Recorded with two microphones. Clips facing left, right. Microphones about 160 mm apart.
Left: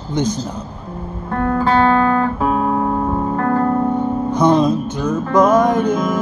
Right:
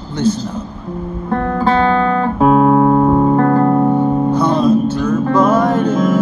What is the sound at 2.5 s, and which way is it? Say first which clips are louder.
Music: right 8 dB; 75° right (ahead or behind).